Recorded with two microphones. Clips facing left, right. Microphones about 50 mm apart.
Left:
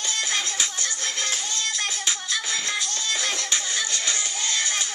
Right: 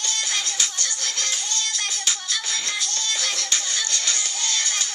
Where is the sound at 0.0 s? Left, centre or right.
Centre.